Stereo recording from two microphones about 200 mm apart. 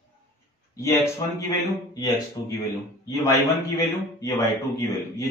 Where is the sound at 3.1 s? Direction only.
15° left (ahead or behind).